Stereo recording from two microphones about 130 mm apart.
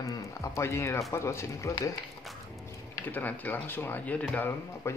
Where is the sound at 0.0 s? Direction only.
25° left (ahead or behind).